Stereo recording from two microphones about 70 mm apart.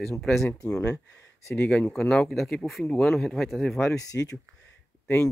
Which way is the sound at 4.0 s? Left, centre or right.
Left.